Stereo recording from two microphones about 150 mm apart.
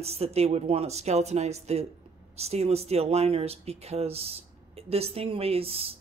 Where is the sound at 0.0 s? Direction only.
45° right (ahead or behind).